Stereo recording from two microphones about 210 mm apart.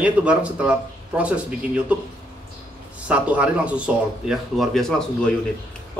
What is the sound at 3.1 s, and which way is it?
Speech, 5° right (ahead or behind).